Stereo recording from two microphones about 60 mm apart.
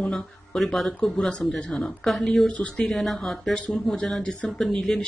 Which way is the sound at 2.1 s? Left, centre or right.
Centre.